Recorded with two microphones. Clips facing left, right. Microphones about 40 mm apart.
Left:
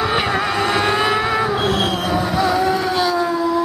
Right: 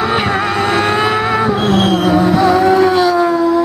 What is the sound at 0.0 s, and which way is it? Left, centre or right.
Vehicle, centre.